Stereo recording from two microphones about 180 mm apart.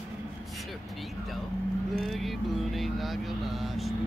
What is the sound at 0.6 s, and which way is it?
Vehicle, centre (ahead or behind).